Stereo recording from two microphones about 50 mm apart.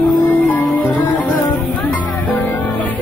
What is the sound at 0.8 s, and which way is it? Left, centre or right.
Music, left.